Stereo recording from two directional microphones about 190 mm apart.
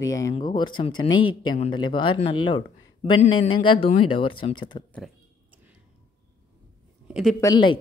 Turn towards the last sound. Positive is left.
turn(degrees=20)  # may be behind; listen again after turning